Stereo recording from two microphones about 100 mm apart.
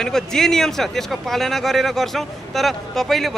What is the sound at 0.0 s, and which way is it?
Speech, 5° left (ahead or behind).